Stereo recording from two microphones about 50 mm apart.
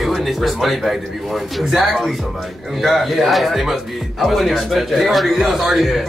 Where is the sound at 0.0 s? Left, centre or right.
Centre.